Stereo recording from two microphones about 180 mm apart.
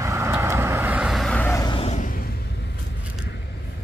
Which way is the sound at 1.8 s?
40° left (ahead or behind).